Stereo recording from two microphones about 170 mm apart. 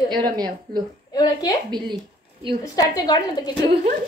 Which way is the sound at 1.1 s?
25° left (ahead or behind).